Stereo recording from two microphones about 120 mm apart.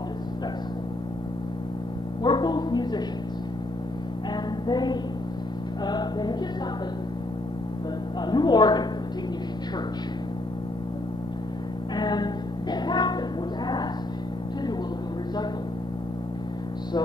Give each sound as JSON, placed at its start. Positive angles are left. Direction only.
{"t": 2.2, "sound": "speech", "side_deg": 40}
{"t": 4.3, "sound": "music", "side_deg": 35}
{"t": 5.9, "sound": "a woman's voice", "side_deg": 35}
{"t": 8.3, "sound": "a woman's voice", "side_deg": 35}
{"t": 12.0, "sound": "music", "side_deg": 35}